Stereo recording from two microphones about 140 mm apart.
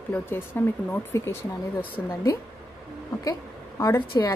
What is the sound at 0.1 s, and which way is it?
A woman's voice, 15° left (ahead or behind).